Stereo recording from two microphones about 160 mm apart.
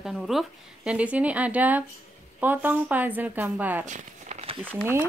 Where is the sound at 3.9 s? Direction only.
50° right (ahead or behind).